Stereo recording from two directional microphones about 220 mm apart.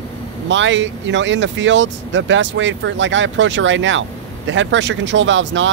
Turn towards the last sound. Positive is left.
turn(degrees=-60)  # may be behind; listen again after turning